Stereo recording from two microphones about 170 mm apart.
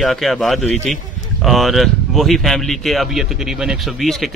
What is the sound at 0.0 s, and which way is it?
A man's voice, centre (ahead or behind).